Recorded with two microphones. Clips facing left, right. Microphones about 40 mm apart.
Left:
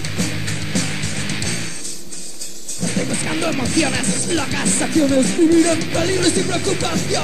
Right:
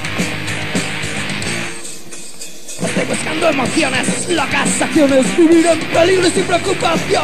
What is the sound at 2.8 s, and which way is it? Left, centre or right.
Music, right.